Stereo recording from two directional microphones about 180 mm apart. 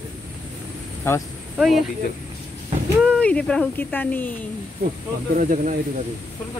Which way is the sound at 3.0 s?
5° left (ahead or behind).